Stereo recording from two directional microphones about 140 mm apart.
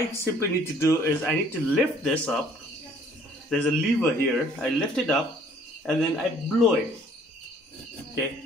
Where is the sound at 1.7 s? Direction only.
5° right (ahead or behind).